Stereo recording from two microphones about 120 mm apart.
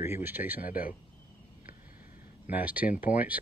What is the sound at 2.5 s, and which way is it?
Speech, 15° right (ahead or behind).